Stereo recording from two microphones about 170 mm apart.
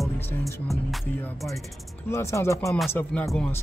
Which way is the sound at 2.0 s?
15° left (ahead or behind).